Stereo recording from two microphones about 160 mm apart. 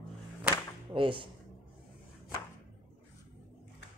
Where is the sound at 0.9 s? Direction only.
30° right (ahead or behind).